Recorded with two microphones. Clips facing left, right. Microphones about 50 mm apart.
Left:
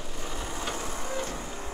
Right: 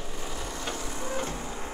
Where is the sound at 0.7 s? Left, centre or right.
Left.